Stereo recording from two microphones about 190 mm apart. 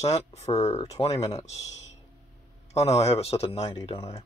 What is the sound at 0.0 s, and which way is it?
Speech, 35° left (ahead or behind).